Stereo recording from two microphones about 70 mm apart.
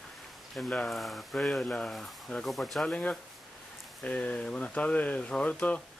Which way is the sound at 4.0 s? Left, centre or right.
Centre.